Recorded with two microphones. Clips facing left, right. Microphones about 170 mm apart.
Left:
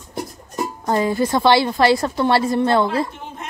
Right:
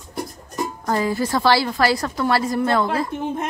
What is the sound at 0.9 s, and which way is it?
A woman's voice, 25° left (ahead or behind).